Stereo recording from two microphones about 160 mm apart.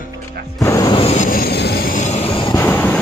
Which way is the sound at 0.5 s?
20° left (ahead or behind).